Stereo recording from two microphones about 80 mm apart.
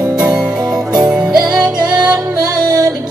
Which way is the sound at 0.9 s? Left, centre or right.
Right.